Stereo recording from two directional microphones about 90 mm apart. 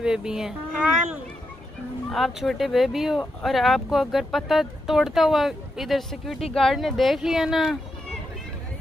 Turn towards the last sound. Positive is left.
turn(degrees=-5)  # may be behind; listen again after turning